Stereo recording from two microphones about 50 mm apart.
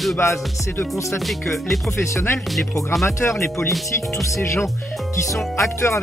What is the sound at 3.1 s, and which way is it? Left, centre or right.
Speech, left.